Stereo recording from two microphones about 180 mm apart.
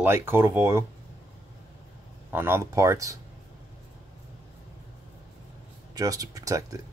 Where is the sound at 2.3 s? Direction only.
15° right (ahead or behind).